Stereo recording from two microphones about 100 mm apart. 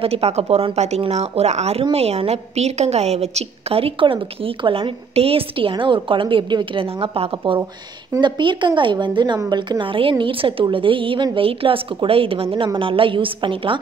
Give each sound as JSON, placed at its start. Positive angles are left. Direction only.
{"t": 0.0, "sound": "a woman's voice", "side_deg": -90}